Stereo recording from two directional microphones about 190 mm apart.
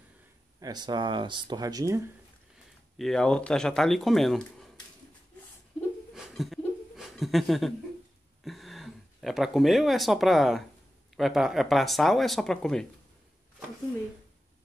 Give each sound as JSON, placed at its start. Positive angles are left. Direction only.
{"t": 0.6, "sound": "speech", "side_deg": -20}
{"t": 3.0, "sound": "speech", "side_deg": 5}
{"t": 6.1, "sound": "laughter", "side_deg": 0}
{"t": 8.5, "sound": "speech", "side_deg": 0}